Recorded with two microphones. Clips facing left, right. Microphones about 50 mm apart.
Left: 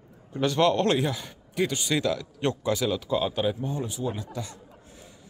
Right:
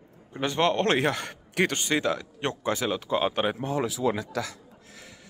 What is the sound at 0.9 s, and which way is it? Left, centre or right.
A man's voice, right.